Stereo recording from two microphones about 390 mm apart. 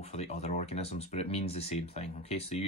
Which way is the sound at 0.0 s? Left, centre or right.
Centre.